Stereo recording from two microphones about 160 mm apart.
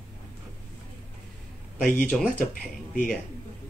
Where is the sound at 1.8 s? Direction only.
60° left (ahead or behind).